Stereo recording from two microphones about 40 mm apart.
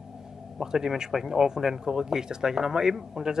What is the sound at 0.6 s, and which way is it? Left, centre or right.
Speech, centre.